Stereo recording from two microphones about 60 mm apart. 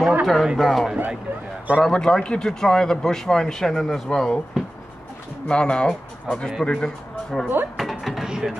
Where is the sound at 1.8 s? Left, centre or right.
Centre.